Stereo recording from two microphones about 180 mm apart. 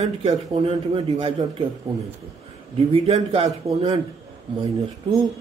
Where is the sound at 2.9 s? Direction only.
35° right (ahead or behind).